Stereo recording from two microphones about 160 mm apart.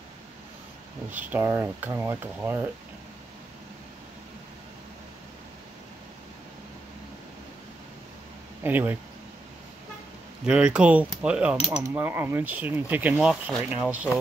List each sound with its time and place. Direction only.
1.1 s speech: 15° right (ahead or behind)
8.6 s speech: 10° right (ahead or behind)
10.4 s speech: 5° right (ahead or behind)